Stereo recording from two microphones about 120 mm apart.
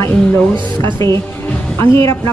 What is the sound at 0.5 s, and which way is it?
Speech, 40° right (ahead or behind).